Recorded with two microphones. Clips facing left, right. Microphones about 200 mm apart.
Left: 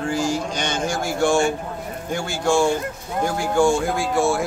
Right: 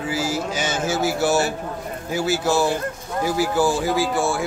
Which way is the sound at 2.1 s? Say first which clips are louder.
Even; 5° right (ahead or behind).